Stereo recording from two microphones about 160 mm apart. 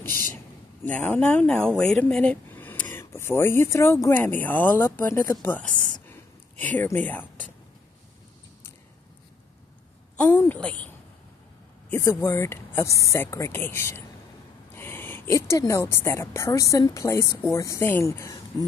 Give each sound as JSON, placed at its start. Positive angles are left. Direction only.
{"t": 0.0, "sound": "a sound", "side_deg": 15}
{"t": 0.8, "sound": "speech", "side_deg": 10}
{"t": 5.7, "sound": "a sound", "side_deg": -55}
{"t": 6.6, "sound": "speech", "side_deg": 10}
{"t": 10.1, "sound": "speech", "side_deg": 10}
{"t": 11.9, "sound": "a woman's voice", "side_deg": 15}